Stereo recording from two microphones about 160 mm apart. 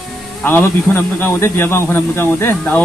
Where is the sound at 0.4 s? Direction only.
15° left (ahead or behind).